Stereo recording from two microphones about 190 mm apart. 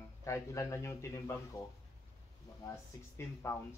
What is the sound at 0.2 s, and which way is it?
A man's voice, 15° left (ahead or behind).